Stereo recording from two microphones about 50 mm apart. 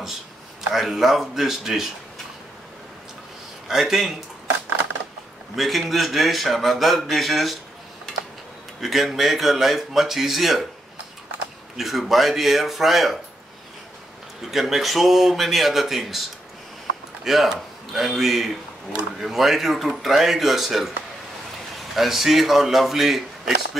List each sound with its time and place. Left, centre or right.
0.7 s speech: centre
3.6 s a man's voice: centre
5.6 s speech: centre
8.8 s speech: centre
11.7 s speech: centre
14.5 s speech: centre
21.9 s speech: centre